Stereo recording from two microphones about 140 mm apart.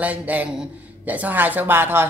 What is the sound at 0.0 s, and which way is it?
Speech, 10° right (ahead or behind).